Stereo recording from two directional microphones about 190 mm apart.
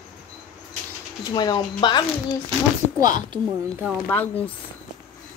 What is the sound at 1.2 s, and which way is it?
Speech, 20° left (ahead or behind).